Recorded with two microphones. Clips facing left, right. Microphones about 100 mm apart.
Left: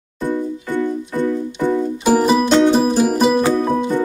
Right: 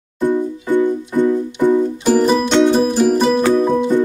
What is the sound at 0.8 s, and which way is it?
Music, 20° right (ahead or behind).